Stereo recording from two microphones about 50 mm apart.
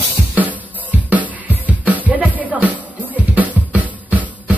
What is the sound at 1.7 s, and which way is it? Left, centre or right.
Music, right.